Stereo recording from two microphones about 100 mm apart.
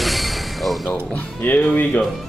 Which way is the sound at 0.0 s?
Centre (ahead or behind).